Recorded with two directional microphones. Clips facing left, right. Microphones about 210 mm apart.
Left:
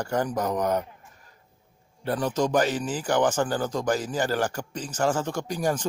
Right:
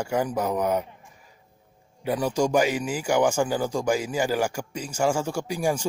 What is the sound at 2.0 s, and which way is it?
Speech, 10° right (ahead or behind).